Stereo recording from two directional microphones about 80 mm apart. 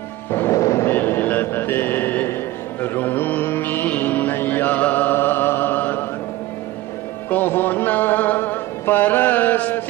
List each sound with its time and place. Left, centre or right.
0.3 s music: left
0.9 s a sound: left
2.8 s mantra: left
7.2 s music: left